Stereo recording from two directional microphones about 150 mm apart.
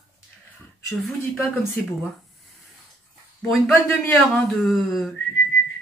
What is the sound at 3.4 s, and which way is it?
A man's voice, centre (ahead or behind).